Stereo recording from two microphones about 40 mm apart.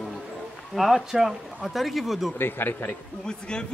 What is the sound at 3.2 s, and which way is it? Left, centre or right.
Speech, centre.